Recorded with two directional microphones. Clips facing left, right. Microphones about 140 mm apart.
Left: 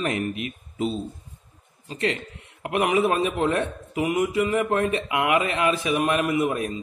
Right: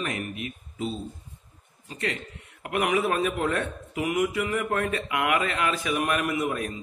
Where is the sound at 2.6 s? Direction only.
25° left (ahead or behind).